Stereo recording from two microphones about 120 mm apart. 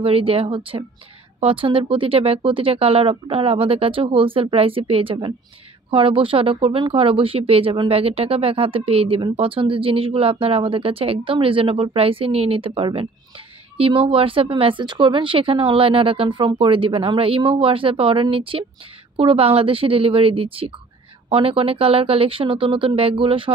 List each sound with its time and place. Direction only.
0.0 s speech: 50° right (ahead or behind)